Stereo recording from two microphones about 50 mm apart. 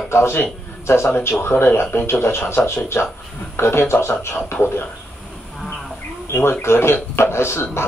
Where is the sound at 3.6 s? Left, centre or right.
Left.